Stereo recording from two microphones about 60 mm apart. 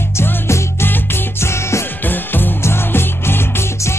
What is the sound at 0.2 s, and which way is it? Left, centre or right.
Music, left.